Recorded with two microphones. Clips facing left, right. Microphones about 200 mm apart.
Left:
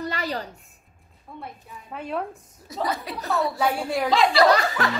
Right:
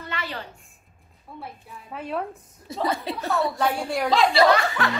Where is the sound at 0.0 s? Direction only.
40° left (ahead or behind).